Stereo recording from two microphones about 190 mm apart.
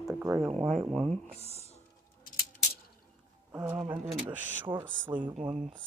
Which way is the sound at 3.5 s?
10° right (ahead or behind).